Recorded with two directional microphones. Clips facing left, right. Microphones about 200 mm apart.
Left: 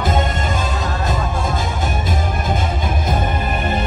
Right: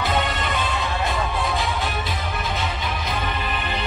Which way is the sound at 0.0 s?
45° left (ahead or behind).